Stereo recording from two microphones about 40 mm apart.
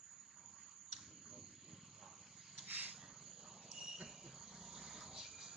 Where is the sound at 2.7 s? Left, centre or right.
Right.